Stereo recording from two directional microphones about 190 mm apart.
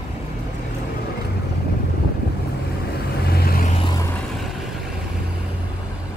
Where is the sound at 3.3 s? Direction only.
50° left (ahead or behind).